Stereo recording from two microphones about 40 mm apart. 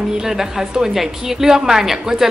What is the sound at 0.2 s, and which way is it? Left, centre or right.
A woman's voice, centre.